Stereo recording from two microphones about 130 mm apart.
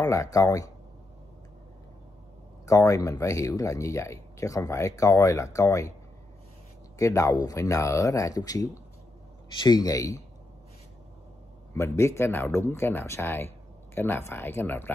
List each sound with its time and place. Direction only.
0.0 s speech: 25° left (ahead or behind)
2.6 s speech: 25° left (ahead or behind)
7.0 s speech: 25° left (ahead or behind)
11.7 s speech: 20° left (ahead or behind)